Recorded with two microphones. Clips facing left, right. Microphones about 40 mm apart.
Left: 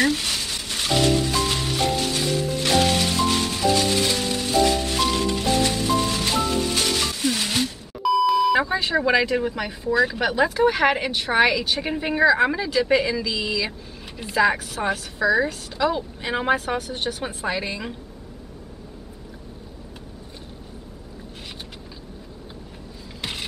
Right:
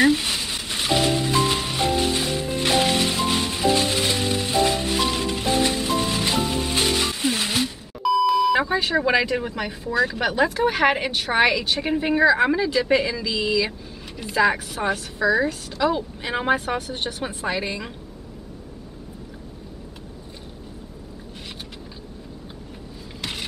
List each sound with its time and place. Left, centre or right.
0.0 s music: centre
7.5 s a woman's voice: centre